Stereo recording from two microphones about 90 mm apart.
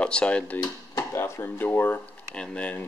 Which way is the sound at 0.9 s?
25° left (ahead or behind).